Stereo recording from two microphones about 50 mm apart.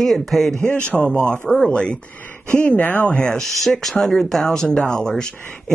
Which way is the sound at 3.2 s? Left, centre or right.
Centre.